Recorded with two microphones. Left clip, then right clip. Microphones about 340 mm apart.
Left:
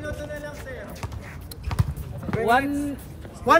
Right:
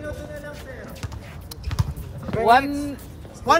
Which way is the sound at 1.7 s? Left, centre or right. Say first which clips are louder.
Left 1 dB; centre.